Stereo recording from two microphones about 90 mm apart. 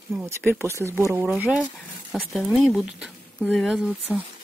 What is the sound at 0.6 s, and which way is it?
Speech, 30° right (ahead or behind).